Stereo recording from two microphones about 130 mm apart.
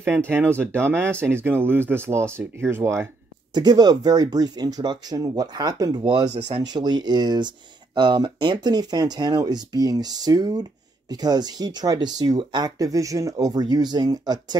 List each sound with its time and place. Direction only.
0.7 s speech: 20° right (ahead or behind)
3.5 s speech: 35° right (ahead or behind)
6.0 s speech: 45° right (ahead or behind)
6.7 s speech: 30° right (ahead or behind)